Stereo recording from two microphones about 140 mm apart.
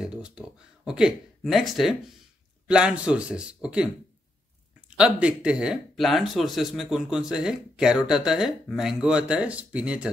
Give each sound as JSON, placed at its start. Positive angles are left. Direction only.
{"t": 0.0, "sound": "a man's voice", "side_deg": -5}